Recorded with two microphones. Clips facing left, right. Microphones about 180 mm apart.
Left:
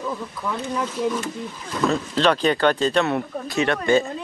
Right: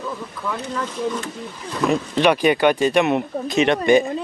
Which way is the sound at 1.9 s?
15° right (ahead or behind).